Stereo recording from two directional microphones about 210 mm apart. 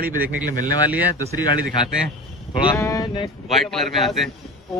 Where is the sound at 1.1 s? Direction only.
20° left (ahead or behind).